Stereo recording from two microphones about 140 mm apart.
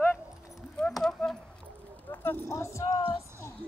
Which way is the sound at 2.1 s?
15° left (ahead or behind).